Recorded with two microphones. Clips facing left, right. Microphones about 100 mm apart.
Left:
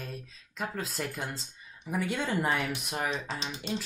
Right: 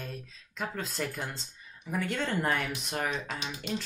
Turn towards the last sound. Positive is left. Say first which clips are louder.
# even
turn(degrees=30)  # may be behind; listen again after turning